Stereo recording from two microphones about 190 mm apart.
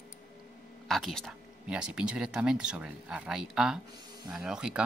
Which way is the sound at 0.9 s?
Centre (ahead or behind).